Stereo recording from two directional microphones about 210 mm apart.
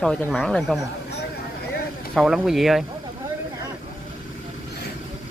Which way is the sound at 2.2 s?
Centre (ahead or behind).